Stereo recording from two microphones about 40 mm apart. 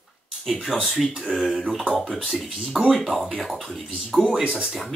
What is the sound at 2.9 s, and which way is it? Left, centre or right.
Speech, centre.